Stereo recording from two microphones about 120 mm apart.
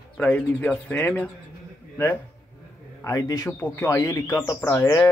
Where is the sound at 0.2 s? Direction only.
10° left (ahead or behind).